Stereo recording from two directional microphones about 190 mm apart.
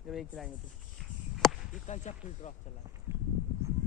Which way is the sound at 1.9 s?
40° left (ahead or behind).